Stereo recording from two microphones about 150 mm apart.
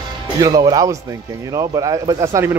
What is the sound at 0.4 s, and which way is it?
A man's voice, 25° right (ahead or behind).